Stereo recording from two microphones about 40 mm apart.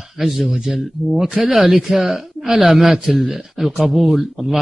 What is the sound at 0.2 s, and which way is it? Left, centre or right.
A man's voice, centre.